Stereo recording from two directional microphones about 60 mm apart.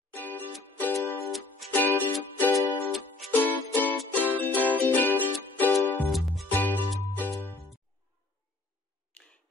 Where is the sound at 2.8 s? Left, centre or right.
Centre.